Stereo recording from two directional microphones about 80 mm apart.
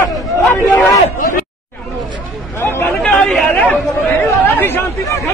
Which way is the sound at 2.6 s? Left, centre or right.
Left.